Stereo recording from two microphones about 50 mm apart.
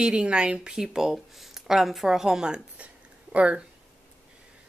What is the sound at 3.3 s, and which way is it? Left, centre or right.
Speech, right.